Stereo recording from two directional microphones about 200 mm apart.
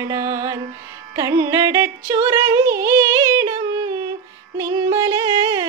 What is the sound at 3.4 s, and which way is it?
Yodeling, 15° right (ahead or behind).